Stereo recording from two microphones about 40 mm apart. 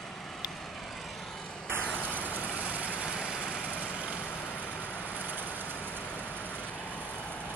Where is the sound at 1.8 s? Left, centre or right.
Left.